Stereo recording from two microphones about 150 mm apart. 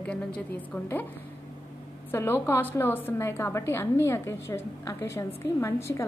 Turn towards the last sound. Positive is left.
turn(degrees=20)  # may be behind; listen again after turning